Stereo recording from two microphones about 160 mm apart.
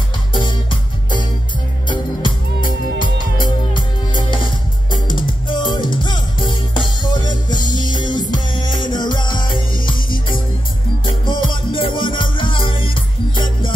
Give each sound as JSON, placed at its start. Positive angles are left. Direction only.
{"t": 0.3, "sound": "music", "side_deg": 30}
{"t": 3.0, "sound": "music", "side_deg": 30}
{"t": 5.5, "sound": "music", "side_deg": 30}
{"t": 11.2, "sound": "music", "side_deg": 30}